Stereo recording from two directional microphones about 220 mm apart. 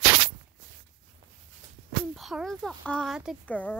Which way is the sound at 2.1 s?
Centre (ahead or behind).